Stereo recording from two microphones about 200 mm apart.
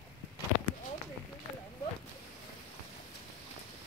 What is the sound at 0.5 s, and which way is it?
Clip-clop, 90° right.